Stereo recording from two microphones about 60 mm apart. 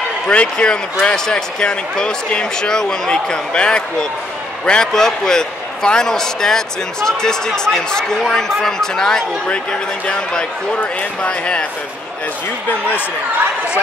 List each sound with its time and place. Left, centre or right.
0.3 s speech: centre